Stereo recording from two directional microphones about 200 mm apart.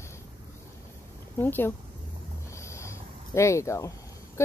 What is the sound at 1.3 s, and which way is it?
Speech, 10° left (ahead or behind).